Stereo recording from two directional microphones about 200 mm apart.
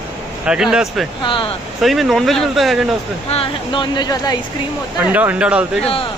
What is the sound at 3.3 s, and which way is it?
Speech, 25° left (ahead or behind).